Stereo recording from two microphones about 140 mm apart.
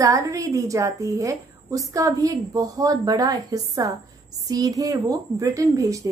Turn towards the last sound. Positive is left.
turn(degrees=-25)  # may be behind; listen again after turning